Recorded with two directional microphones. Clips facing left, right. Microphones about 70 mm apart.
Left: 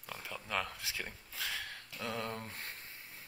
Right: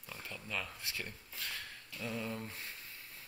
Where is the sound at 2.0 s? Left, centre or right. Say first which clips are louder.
Left 1 dB; left.